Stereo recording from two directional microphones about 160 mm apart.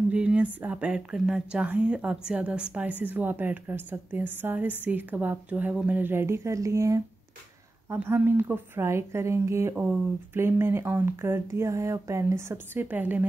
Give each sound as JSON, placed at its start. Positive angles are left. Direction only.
{"t": 0.1, "sound": "a woman's voice", "side_deg": -5}